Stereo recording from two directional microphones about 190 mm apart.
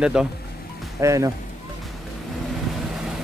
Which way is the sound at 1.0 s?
15° right (ahead or behind).